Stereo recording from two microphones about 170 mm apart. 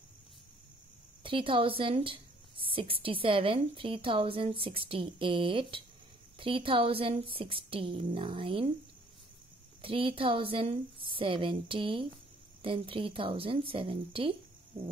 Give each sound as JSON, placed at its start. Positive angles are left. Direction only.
{"t": 1.2, "sound": "a woman's voice", "side_deg": -30}
{"t": 9.8, "sound": "a woman's voice", "side_deg": -30}